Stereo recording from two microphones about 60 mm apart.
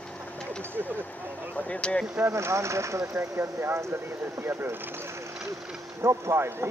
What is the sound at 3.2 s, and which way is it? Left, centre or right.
Speech, right.